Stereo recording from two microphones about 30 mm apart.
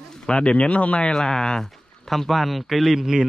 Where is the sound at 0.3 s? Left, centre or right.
Left.